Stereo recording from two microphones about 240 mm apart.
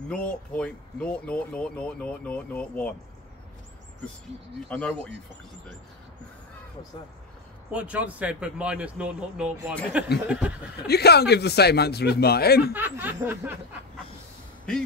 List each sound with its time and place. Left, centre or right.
0.1 s speech: centre
4.6 s speech: centre
7.7 s speech: centre
10.9 s speech: left
12.7 s snicker: centre